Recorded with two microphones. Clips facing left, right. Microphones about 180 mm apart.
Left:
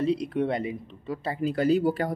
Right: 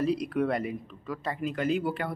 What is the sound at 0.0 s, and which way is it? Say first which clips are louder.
Speech: left 1 dB; 25° left (ahead or behind).